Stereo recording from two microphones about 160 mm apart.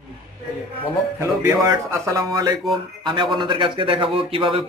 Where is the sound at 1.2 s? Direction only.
20° right (ahead or behind).